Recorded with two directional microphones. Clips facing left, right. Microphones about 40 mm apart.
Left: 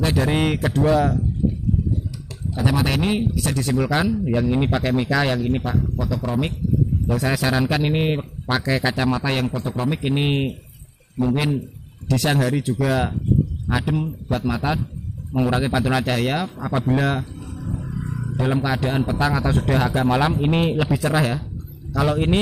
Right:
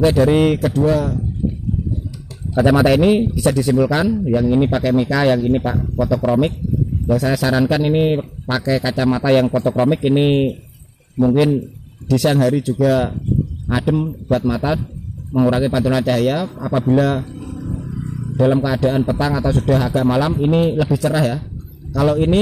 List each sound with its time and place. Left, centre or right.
0.0 s speech: centre
0.6 s speech: centre
2.6 s speech: right
2.9 s speech: centre
5.6 s speech: centre
6.0 s speech: right
7.1 s speech: centre
9.2 s speech: centre
9.6 s speech: right
9.8 s speech: centre
17.2 s speech: centre
18.3 s wild animals: centre
18.6 s speech: centre
20.4 s speech: left; by 22.4 s centre